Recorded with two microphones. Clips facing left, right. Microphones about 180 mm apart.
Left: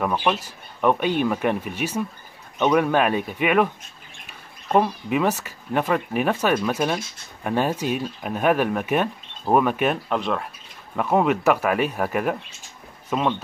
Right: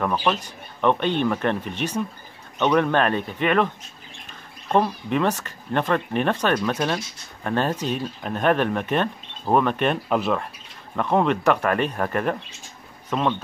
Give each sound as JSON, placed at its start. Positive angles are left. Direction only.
{"t": 0.0, "sound": "speech", "side_deg": 5}
{"t": 10.0, "sound": "speech", "side_deg": -5}